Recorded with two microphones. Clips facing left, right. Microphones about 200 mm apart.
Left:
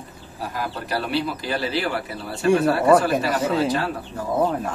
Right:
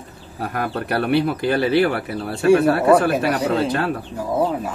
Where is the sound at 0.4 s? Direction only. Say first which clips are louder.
Right 5 dB; 60° right (ahead or behind).